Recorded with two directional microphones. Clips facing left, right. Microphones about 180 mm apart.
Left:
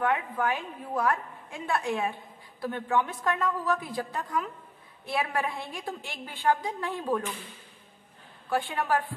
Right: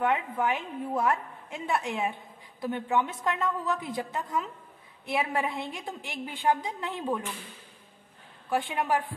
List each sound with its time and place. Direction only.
0.0 s a woman's voice: 20° right (ahead or behind)
8.5 s a woman's voice: 20° right (ahead or behind)